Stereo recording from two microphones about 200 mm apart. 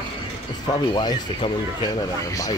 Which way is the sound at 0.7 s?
20° left (ahead or behind).